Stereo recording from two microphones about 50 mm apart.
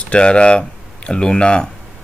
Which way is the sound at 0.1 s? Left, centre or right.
Centre.